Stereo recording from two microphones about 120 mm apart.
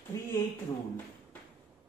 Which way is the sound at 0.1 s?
25° left (ahead or behind).